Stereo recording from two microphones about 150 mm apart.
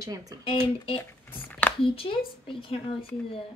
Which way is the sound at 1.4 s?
10° left (ahead or behind).